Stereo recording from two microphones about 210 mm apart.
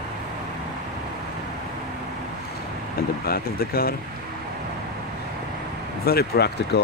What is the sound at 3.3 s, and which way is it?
Speech, 45° left (ahead or behind).